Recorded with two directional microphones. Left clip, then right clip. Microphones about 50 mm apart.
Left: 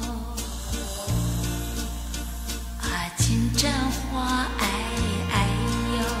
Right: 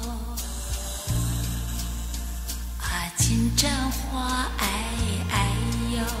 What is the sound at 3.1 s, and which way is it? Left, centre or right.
Music, right.